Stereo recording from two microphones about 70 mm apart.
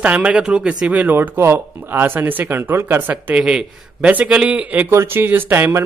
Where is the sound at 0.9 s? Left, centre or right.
Right.